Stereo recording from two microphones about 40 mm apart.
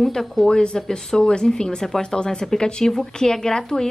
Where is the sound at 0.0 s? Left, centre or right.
Centre.